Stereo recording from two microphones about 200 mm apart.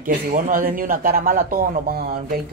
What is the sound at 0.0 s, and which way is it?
Speech, 45° right (ahead or behind).